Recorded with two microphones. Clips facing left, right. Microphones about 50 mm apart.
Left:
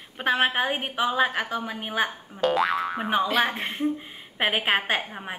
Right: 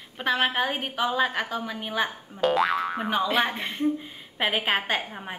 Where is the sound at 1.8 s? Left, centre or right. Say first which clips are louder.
Left 1 dB; left.